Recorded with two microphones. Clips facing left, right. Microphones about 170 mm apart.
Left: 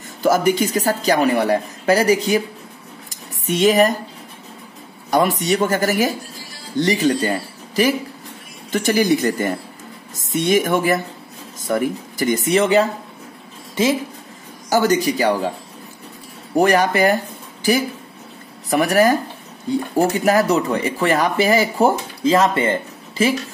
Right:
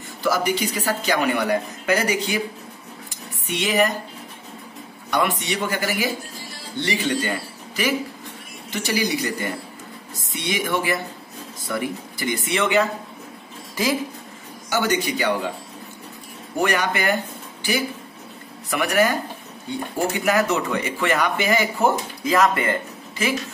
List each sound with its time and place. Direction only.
0.2 s speech: 50° left (ahead or behind)
3.1 s a sound: 40° left (ahead or behind)
5.1 s speech: 40° left (ahead or behind)
8.7 s speech: 50° left (ahead or behind)
14.7 s speech: 40° left (ahead or behind)
16.5 s speech: 35° left (ahead or behind)